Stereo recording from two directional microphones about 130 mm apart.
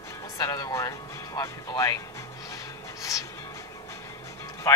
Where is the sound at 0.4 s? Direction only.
30° left (ahead or behind).